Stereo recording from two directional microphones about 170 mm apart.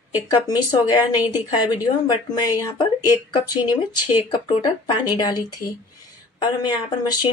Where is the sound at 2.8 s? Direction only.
25° left (ahead or behind).